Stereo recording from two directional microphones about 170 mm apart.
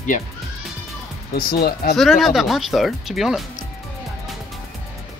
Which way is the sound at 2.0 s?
Centre (ahead or behind).